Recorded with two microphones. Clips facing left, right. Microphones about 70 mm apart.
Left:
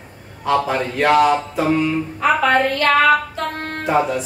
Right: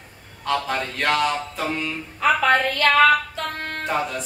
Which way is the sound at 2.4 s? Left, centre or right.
Left.